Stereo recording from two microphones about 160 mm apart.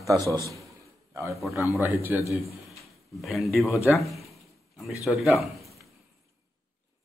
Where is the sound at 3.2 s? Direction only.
Centre (ahead or behind).